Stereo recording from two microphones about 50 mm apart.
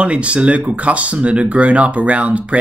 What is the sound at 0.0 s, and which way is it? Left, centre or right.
Speech, right.